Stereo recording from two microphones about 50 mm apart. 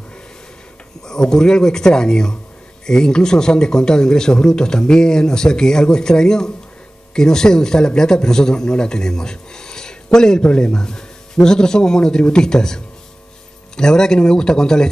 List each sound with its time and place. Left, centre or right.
1.0 s a man's voice: centre